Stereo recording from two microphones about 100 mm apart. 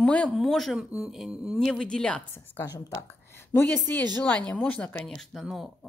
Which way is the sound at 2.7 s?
35° left (ahead or behind).